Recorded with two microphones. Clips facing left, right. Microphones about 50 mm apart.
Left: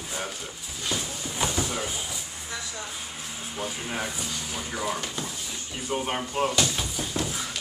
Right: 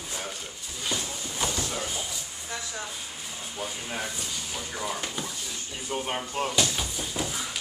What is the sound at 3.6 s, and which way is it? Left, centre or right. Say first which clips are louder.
Speech: left 2 dB; centre.